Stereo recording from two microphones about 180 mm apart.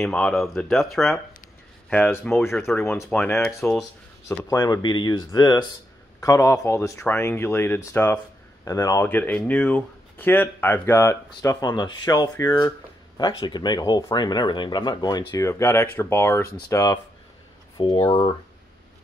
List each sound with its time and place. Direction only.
0.0 s speech: 5° left (ahead or behind)
4.5 s speech: 20° left (ahead or behind)